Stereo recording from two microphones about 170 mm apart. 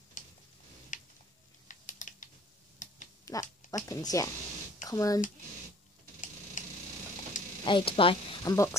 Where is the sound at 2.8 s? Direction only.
50° left (ahead or behind).